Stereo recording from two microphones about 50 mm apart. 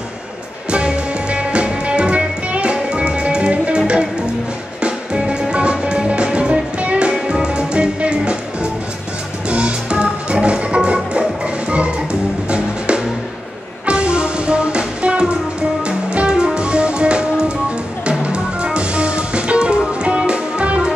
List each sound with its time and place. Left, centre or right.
0.7 s music: right
9.5 s music: centre